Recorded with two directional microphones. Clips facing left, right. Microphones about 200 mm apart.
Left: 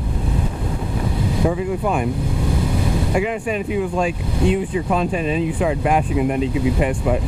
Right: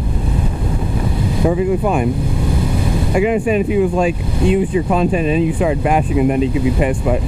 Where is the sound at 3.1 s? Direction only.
10° right (ahead or behind).